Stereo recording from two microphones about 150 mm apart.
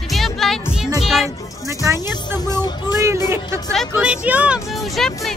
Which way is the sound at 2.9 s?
20° right (ahead or behind).